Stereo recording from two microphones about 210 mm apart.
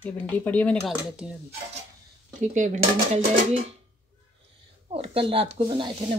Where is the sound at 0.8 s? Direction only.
5° right (ahead or behind).